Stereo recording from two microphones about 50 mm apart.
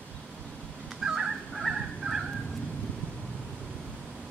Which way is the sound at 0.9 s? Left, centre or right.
Centre.